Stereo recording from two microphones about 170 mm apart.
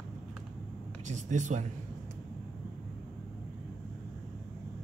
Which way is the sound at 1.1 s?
45° right (ahead or behind).